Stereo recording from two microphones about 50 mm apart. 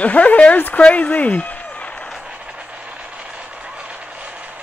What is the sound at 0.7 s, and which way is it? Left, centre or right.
Speech, left.